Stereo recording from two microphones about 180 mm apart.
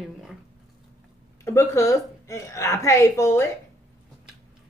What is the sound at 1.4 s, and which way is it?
A woman's voice, 15° left (ahead or behind).